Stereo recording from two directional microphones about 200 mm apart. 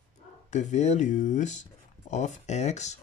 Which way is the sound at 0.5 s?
35° left (ahead or behind).